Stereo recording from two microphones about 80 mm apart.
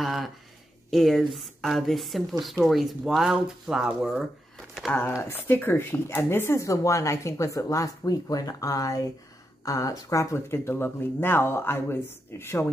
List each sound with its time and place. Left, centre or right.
0.0 s a sound: centre
0.8 s a woman's voice: centre
5.3 s speech: left
6.6 s speech: left